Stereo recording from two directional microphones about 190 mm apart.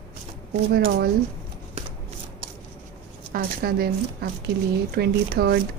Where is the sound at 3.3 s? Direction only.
50° right (ahead or behind).